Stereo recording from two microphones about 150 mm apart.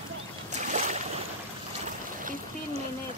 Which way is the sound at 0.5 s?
55° right (ahead or behind).